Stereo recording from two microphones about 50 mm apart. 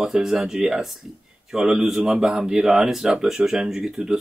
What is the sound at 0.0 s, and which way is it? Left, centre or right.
A man's voice, centre.